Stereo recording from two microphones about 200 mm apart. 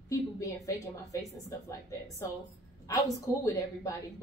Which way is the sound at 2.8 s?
15° left (ahead or behind).